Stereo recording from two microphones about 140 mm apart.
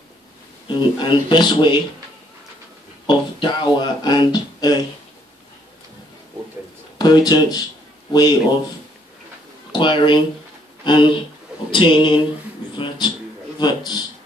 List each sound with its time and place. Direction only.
0.7 s speech: 35° left (ahead or behind)
3.1 s speech: 35° left (ahead or behind)
7.0 s speech: 30° left (ahead or behind)
9.7 s speech: 35° left (ahead or behind)